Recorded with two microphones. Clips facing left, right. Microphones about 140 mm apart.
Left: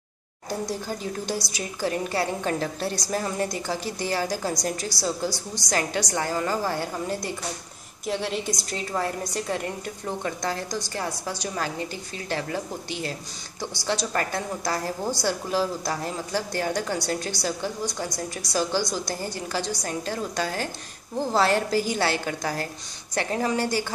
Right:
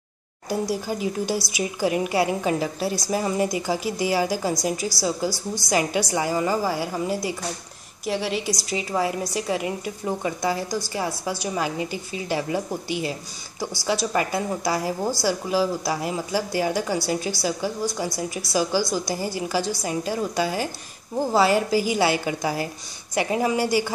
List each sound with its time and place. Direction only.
0.5 s a woman's voice: 10° right (ahead or behind)